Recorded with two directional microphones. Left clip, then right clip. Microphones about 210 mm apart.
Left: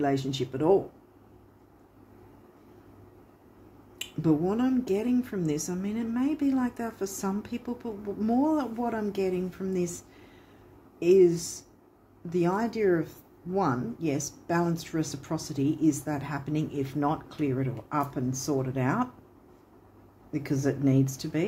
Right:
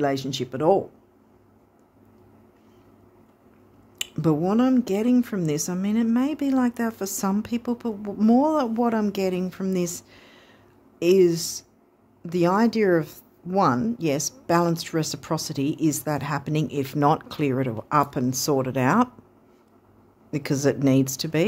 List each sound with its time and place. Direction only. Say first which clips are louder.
0.0 s speech: right 3 dB; 55° right (ahead or behind)
4.0 s speech: right 3 dB; 55° right (ahead or behind)
20.2 s speech: right 6 dB; 55° right (ahead or behind)